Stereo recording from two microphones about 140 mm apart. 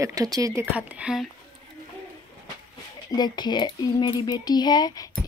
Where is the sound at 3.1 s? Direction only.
30° left (ahead or behind).